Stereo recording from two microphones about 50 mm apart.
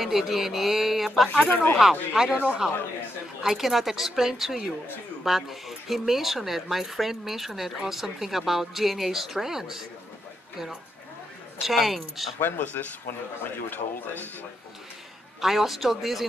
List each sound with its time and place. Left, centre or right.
0.0 s speech: centre
1.3 s speech: left
1.8 s speech: centre
2.4 s a man's voice: centre
3.4 s speech: centre
11.6 s speech: centre
12.4 s speech: left
15.4 s speech: centre